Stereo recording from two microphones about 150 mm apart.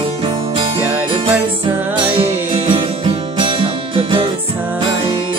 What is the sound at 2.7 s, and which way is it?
Music, 35° right (ahead or behind).